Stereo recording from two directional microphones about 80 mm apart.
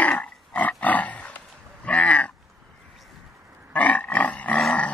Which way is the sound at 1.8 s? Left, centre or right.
Centre.